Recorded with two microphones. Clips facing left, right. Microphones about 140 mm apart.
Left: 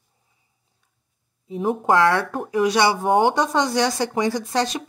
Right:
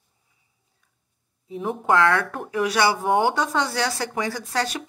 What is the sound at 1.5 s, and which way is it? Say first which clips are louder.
Speech: left 3 dB; 30° left (ahead or behind).